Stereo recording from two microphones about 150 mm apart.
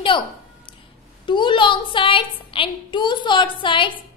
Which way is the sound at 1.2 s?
30° left (ahead or behind).